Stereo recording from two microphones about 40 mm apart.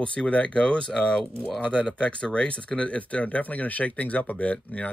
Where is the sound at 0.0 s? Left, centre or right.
Left.